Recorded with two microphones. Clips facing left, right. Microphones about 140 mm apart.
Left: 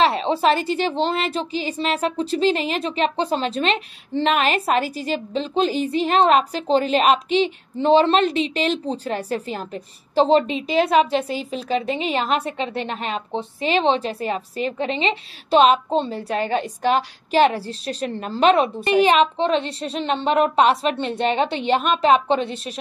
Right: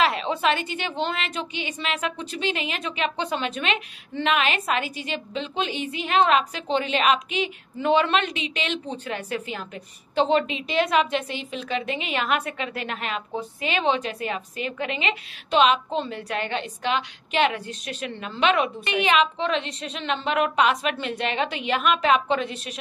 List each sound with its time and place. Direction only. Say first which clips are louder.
0.0 s a woman's voice: left 4 dB; 30° left (ahead or behind)